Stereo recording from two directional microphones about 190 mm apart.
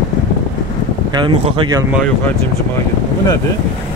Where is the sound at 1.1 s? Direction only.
25° right (ahead or behind).